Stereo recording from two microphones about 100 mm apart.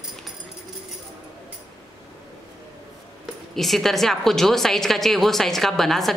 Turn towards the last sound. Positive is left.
turn(degrees=5)  # may be behind; listen again after turning